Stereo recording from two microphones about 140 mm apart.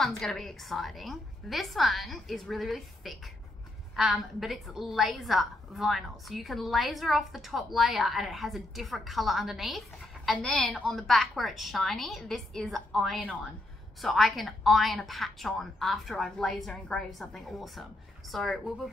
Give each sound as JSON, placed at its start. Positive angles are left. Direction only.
{"t": 0.2, "sound": "a woman's voice", "side_deg": 0}